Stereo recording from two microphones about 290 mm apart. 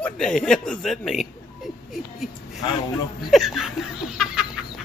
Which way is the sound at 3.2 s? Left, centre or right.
Centre.